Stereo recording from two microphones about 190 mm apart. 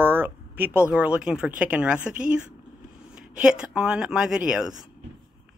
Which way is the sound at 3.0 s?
5° right (ahead or behind).